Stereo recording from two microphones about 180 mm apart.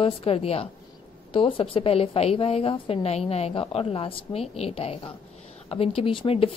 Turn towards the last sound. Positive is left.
turn(degrees=30)  # may be behind; listen again after turning